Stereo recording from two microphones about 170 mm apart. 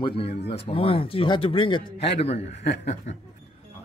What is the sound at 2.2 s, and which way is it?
Speech, 40° left (ahead or behind).